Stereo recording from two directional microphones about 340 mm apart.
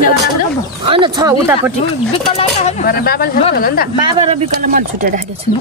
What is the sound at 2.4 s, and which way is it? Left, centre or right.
Speech, centre.